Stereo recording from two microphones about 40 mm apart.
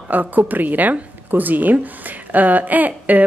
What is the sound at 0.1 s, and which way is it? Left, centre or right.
Speech, right.